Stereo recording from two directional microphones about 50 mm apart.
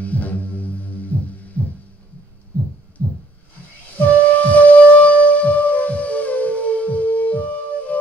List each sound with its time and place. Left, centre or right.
0.0 s music: left
1.1 s heart sounds: left
3.9 s music: left